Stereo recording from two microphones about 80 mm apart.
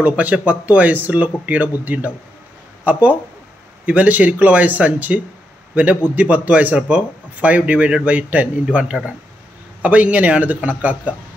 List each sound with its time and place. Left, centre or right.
0.0 s a man's voice: centre